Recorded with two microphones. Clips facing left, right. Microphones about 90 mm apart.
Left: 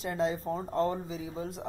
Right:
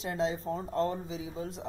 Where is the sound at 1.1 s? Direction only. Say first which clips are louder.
Left 1 dB; centre (ahead or behind).